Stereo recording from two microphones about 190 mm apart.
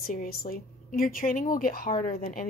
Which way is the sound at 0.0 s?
50° left (ahead or behind).